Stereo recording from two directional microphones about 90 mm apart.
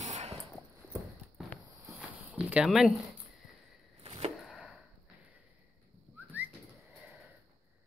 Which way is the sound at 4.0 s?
90° right.